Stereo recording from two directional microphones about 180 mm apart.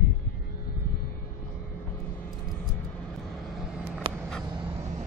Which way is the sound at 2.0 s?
10° left (ahead or behind).